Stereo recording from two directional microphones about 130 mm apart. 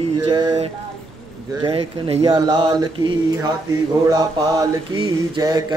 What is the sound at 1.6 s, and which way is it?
Mantra, 45° right (ahead or behind).